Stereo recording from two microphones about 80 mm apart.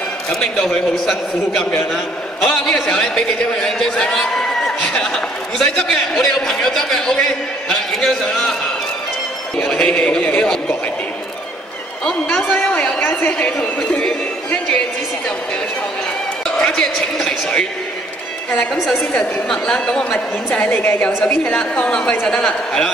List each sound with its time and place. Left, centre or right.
0.4 s a man's voice: centre
9.7 s a man's voice: centre
13.0 s a woman's voice: left
16.4 s a man's voice: centre
19.5 s a man's voice: centre
21.2 s a man's voice: centre